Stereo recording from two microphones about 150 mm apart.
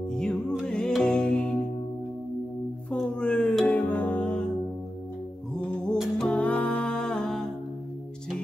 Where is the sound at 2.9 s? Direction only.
5° left (ahead or behind).